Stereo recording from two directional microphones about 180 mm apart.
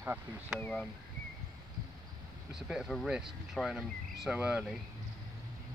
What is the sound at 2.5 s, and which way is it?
Speech, 5° right (ahead or behind).